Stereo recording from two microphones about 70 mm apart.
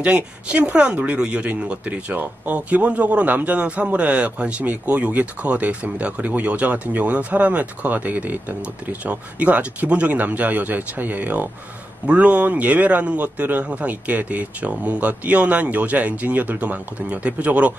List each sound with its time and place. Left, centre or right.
0.0 s speech: centre